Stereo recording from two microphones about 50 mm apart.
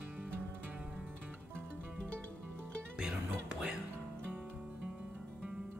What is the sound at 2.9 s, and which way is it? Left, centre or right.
Music, centre.